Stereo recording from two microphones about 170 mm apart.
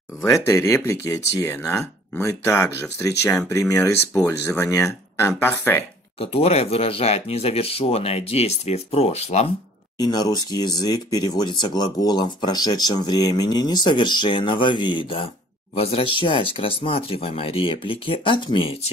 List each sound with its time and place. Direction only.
0.2 s speech: 15° left (ahead or behind)
6.1 s speech: 35° left (ahead or behind)
9.9 s speech: 25° left (ahead or behind)